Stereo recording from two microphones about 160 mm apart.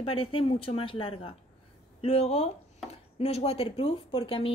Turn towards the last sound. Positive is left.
turn(degrees=35)  # may be behind; listen again after turning